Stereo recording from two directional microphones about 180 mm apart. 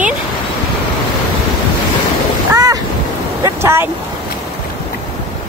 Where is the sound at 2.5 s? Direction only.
20° right (ahead or behind).